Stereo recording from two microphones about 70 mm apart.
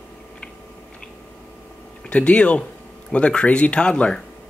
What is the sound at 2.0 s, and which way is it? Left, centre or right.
Speech, centre.